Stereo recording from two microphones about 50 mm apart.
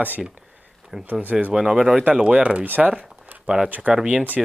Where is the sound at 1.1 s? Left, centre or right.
Right.